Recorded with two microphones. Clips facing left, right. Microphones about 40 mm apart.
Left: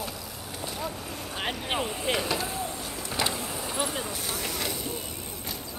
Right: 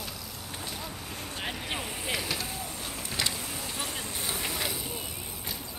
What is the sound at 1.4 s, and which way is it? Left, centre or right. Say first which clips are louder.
Vehicle: left 5 dB; left.